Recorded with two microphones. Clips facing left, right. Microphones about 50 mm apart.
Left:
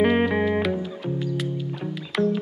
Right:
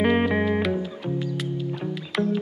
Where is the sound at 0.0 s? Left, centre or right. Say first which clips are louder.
Left 1 dB; centre.